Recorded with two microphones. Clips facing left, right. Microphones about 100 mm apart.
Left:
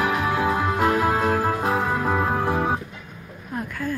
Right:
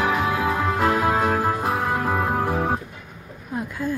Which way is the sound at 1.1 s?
25° right (ahead or behind).